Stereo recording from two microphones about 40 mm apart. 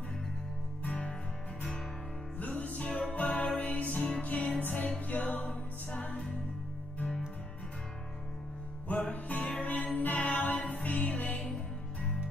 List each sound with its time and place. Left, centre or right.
0.8 s music: left
2.3 s music: left
2.9 s music: centre
3.2 s music: left
5.5 s music: left
9.1 s music: left